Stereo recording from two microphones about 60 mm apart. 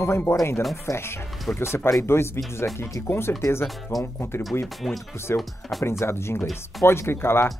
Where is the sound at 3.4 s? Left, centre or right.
Left.